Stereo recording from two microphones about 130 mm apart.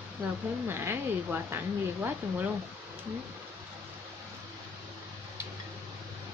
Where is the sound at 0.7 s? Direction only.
15° right (ahead or behind).